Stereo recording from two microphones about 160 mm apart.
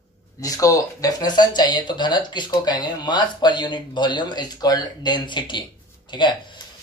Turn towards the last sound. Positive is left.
turn(degrees=30)  # may be behind; listen again after turning